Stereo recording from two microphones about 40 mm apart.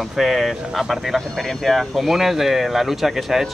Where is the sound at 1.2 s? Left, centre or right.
Centre.